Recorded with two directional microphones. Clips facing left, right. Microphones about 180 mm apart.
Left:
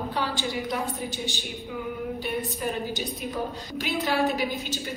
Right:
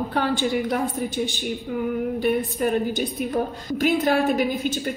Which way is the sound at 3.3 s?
50° right (ahead or behind).